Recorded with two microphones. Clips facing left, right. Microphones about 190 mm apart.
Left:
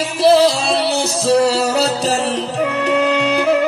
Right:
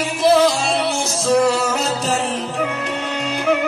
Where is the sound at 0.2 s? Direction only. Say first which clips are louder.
Left 3 dB; 35° left (ahead or behind).